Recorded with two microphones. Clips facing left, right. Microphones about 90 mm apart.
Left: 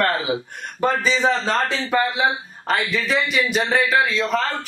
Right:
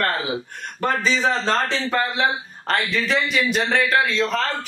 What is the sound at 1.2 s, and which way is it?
A man's voice, 5° left (ahead or behind).